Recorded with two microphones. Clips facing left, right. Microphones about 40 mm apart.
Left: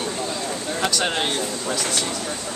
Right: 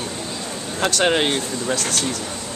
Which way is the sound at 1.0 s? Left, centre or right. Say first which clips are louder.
Right 4 dB; right.